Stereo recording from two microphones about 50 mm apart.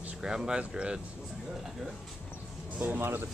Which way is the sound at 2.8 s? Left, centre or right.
Right.